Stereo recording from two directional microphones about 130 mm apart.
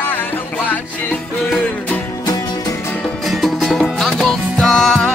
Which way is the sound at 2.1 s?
30° left (ahead or behind).